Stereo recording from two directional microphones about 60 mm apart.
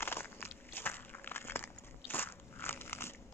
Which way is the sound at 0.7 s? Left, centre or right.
Left.